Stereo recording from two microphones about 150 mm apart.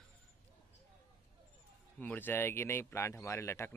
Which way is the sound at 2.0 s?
10° left (ahead or behind).